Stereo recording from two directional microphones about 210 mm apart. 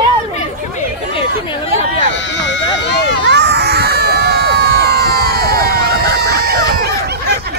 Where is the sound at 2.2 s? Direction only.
60° left (ahead or behind).